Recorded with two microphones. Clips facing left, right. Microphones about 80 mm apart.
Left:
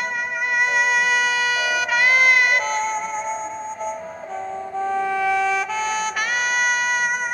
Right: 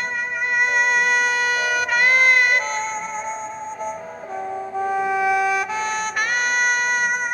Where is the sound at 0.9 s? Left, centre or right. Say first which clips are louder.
Even; centre.